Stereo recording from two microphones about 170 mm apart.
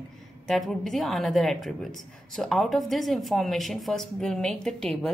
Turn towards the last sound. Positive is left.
turn(degrees=0)  # may be behind; listen again after turning